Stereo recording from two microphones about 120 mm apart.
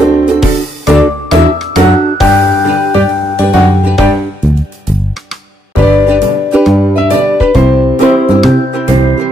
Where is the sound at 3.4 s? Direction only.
Centre (ahead or behind).